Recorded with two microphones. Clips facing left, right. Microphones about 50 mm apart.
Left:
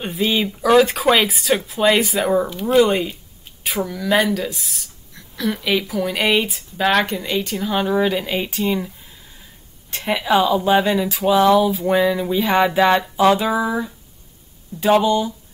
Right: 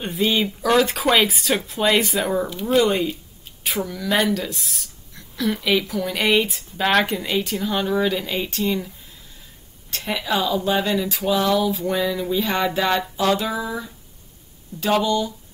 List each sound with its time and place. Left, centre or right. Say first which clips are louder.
0.0 s speech: left 1 dB; centre
7.8 s speech: left 4 dB; centre
11.3 s music: left 6 dB; left
14.8 s speech: left 4 dB; centre